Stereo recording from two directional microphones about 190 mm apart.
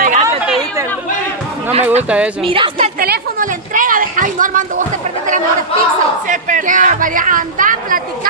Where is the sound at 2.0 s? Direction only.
5° right (ahead or behind).